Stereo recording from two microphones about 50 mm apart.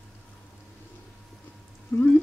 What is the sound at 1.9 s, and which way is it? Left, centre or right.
Speech, left.